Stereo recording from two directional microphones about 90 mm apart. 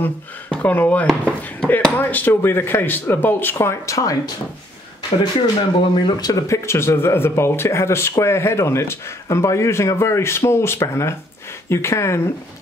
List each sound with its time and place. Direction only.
0.0 s speech: 20° left (ahead or behind)
3.5 s a man's voice: 35° left (ahead or behind)
5.6 s speech: 65° left (ahead or behind); by 6.4 s 50° left (ahead or behind)
6.4 s a man's voice: 30° left (ahead or behind)